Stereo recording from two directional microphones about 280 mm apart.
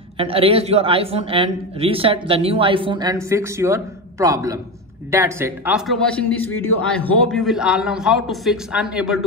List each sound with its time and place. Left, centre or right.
0.2 s a man's voice: centre